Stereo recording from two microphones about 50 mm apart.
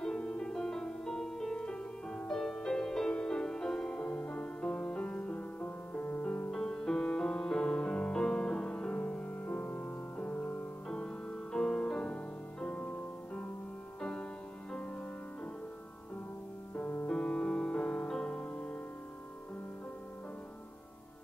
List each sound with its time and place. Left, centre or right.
0.0 s music: centre
6.5 s music: centre
9.8 s music: left
10.9 s music: centre
16.7 s music: left